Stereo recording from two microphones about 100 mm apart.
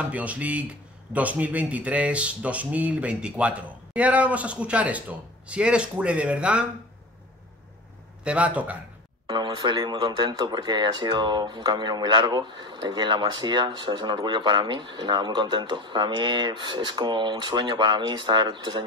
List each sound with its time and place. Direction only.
0.1 s speech: 15° right (ahead or behind)
8.2 s speech: 10° right (ahead or behind)
9.3 s speech: 50° right (ahead or behind)